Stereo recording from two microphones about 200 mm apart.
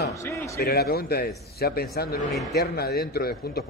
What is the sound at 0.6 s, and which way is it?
A man's voice, 50° left (ahead or behind).